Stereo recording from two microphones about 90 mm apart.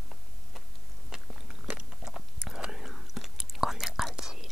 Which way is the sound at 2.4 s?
5° right (ahead or behind).